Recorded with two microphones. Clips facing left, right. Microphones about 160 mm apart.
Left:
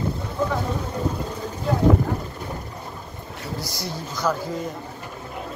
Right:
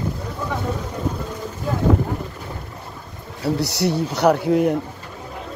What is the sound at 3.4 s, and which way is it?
Speech, 70° right (ahead or behind).